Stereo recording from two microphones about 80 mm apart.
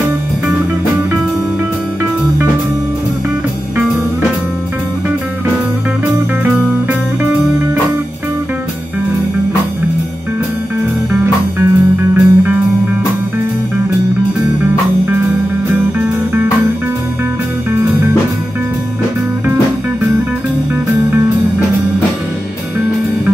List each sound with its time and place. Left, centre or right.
6.1 s music: right
11.1 s music: right
15.7 s music: right